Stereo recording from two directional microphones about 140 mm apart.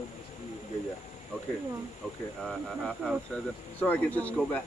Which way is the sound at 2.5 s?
5° left (ahead or behind).